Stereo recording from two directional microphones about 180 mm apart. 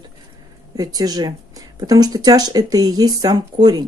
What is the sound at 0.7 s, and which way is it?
Speech, 20° right (ahead or behind).